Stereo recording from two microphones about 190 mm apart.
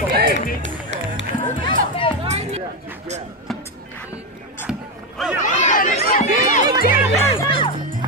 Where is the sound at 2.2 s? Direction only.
35° right (ahead or behind).